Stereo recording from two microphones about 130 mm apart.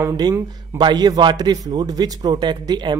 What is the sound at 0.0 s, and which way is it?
A man's voice, 25° right (ahead or behind).